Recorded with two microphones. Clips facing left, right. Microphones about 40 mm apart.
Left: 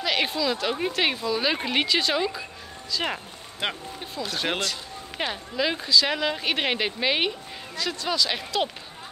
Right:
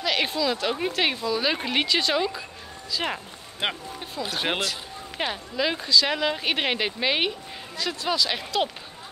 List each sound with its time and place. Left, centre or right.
0.0 s speech: centre
3.6 s speech: centre